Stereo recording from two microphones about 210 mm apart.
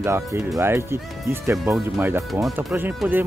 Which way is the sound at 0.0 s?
10° right (ahead or behind).